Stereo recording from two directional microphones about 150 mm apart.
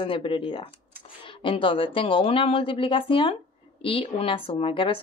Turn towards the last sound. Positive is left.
turn(degrees=35)  # may be behind; listen again after turning